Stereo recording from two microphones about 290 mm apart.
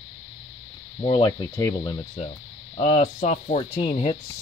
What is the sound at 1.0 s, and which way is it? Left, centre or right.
Speech, centre.